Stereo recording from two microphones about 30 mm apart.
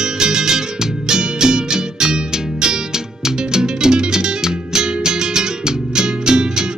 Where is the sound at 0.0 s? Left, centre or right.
Right.